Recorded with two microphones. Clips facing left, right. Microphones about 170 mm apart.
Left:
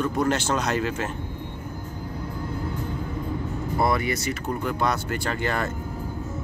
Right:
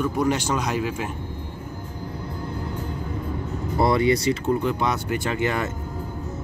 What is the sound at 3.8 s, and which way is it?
Speech, 25° right (ahead or behind).